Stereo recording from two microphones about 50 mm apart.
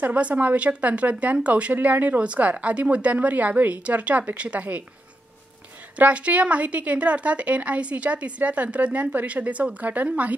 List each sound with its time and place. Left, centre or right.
0.0 s speech: right
5.9 s a woman's voice: right